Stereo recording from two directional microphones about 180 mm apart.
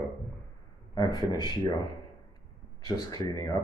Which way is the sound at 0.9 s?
20° left (ahead or behind).